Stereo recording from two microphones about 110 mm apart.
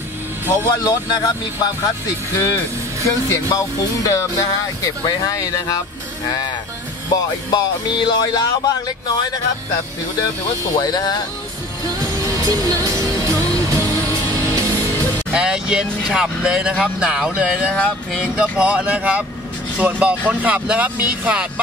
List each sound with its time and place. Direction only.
0.8 s speech: 40° left (ahead or behind)
2.3 s speech: 30° left (ahead or behind)
7.5 s speech: 40° left (ahead or behind)
10.8 s speech: 35° left (ahead or behind)
12.0 s music: 30° right (ahead or behind)
15.3 s speech: 10° right (ahead or behind)
17.7 s speech: 10° left (ahead or behind)
18.2 s speech: 10° right (ahead or behind)